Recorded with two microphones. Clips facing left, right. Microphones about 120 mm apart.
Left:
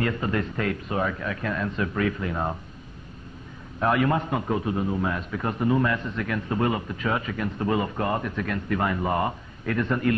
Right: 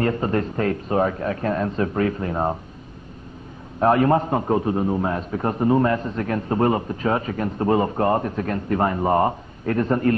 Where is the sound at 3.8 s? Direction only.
35° right (ahead or behind).